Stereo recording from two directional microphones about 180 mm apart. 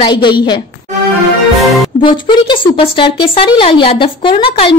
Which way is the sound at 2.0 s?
25° left (ahead or behind).